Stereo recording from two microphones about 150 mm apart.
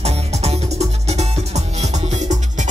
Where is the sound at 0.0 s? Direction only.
45° right (ahead or behind).